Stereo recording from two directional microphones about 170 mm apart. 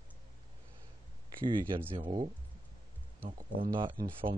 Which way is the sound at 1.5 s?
25° right (ahead or behind).